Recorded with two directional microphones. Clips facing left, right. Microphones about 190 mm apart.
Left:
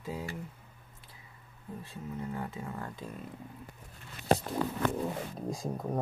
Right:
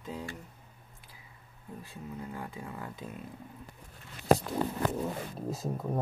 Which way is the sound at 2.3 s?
Centre (ahead or behind).